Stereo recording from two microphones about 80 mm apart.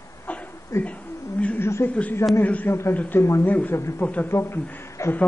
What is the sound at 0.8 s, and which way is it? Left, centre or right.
Speech, centre.